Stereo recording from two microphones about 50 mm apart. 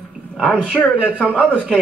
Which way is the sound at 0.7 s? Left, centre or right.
Left.